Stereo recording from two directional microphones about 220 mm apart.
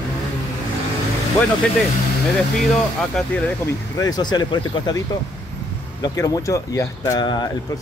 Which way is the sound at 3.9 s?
15° left (ahead or behind).